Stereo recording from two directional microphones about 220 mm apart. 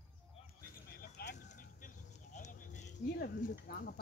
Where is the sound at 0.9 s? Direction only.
45° left (ahead or behind).